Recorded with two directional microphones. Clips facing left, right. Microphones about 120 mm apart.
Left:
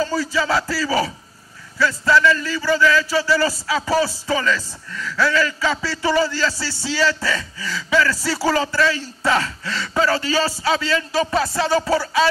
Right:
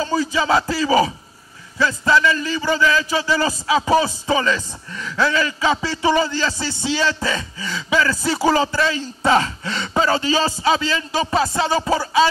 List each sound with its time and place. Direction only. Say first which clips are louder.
0.0 s a man's voice: right 1 dB; 20° right (ahead or behind)